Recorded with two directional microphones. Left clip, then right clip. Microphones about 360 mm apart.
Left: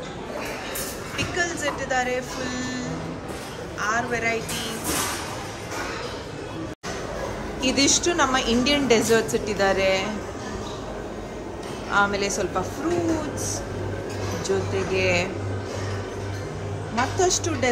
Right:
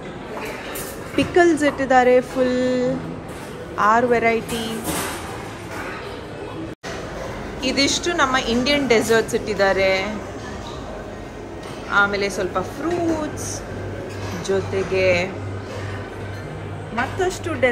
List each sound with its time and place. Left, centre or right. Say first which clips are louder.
1.1 s a woman's voice: right 10 dB; centre
7.6 s a woman's voice: right 1 dB; centre
11.9 s a woman's voice: right 3 dB; centre
14.5 s a woman's voice: right 4 dB; centre
17.2 s a woman's voice: right 1 dB; centre